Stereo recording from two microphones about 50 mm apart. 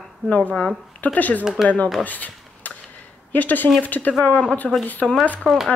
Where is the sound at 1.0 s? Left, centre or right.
Left.